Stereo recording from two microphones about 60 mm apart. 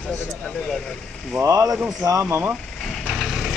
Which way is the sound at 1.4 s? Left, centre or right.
Right.